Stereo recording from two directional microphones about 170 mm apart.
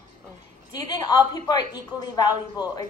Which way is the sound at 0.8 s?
25° left (ahead or behind).